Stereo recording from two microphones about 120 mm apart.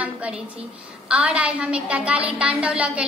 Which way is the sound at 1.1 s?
10° right (ahead or behind).